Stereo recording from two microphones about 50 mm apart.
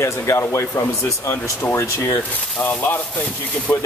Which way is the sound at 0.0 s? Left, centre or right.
Left.